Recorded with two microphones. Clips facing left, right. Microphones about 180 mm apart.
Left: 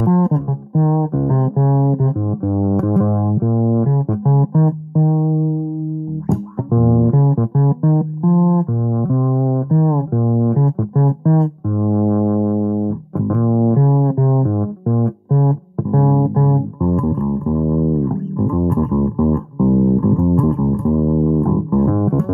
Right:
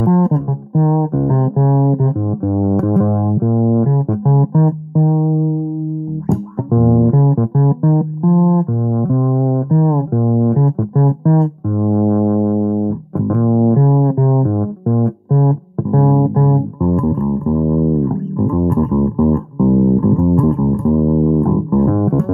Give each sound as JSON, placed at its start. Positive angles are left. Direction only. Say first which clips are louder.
{"t": 0.0, "sound": "music", "louder": "right 2 dB", "side_deg": -40}
{"t": 6.7, "sound": "music", "louder": "right 2 dB", "side_deg": -40}